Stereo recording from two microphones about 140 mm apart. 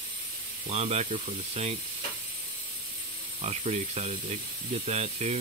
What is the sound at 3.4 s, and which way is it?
Speech, 50° right (ahead or behind).